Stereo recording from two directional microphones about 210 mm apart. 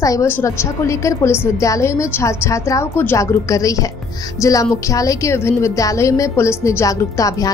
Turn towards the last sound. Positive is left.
turn(degrees=15)  # may be behind; listen again after turning